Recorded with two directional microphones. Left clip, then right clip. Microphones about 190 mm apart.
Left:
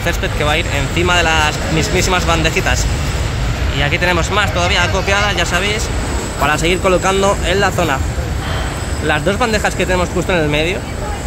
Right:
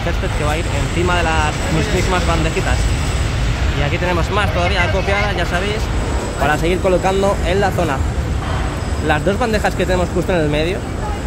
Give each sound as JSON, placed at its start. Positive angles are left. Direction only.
{"t": 0.5, "sound": "speech", "side_deg": 15}
{"t": 3.8, "sound": "speech", "side_deg": 10}
{"t": 9.0, "sound": "speech", "side_deg": 0}